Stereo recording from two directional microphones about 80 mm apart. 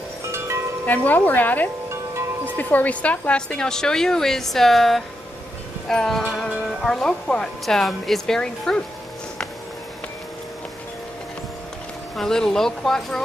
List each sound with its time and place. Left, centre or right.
0.8 s a woman's voice: left
12.2 s speech: centre